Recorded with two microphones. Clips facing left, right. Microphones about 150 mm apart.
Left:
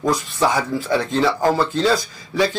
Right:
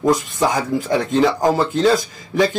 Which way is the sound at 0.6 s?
20° right (ahead or behind).